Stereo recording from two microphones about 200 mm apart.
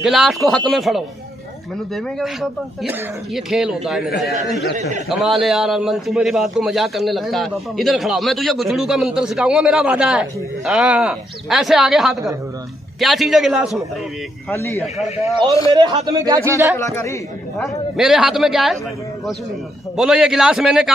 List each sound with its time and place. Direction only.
0.0 s a man's voice: centre (ahead or behind)
14.5 s a man's voice: 10° left (ahead or behind)
15.7 s a man's voice: 20° right (ahead or behind)
16.7 s a man's voice: 15° left (ahead or behind)
17.9 s a man's voice: centre (ahead or behind)
20.0 s a man's voice: 5° right (ahead or behind)